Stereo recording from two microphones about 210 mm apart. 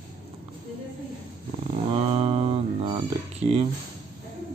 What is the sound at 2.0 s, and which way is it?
Mantra, 30° right (ahead or behind).